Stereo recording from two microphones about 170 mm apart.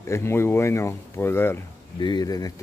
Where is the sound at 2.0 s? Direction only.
25° left (ahead or behind).